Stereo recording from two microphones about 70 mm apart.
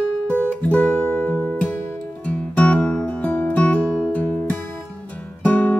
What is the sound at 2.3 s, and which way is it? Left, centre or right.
Music, centre.